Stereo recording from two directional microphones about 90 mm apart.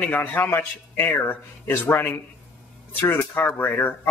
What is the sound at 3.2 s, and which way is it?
Speech, 25° left (ahead or behind).